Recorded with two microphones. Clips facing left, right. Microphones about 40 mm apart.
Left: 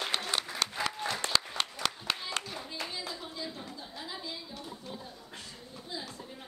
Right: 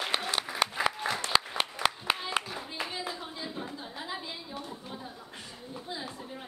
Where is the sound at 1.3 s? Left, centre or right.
Centre.